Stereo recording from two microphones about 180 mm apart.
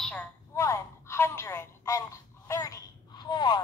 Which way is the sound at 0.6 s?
15° left (ahead or behind).